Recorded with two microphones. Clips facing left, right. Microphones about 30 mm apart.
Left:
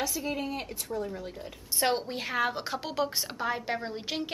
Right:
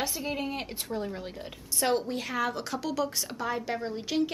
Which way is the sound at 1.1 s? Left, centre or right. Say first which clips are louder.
Even; right.